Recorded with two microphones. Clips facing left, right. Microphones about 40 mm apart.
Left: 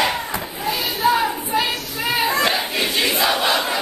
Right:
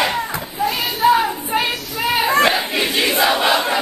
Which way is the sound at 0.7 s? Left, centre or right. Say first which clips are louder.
Right 3 dB; centre.